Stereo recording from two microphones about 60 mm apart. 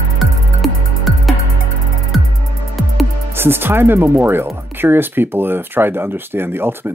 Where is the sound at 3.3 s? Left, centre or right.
Right.